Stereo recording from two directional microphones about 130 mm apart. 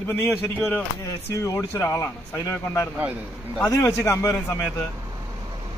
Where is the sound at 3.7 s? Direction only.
20° left (ahead or behind).